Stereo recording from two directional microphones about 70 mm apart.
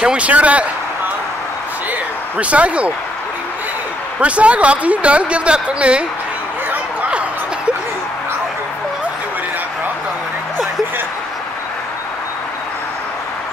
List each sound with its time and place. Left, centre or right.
0.0 s a man's voice: centre
2.3 s a man's voice: centre
4.2 s a woman's voice: centre
6.7 s a sound: centre